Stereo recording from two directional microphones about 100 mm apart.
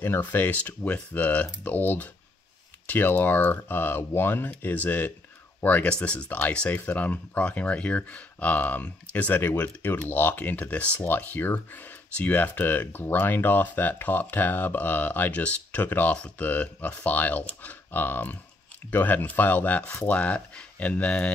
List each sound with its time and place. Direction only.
0.0 s speech: 20° left (ahead or behind)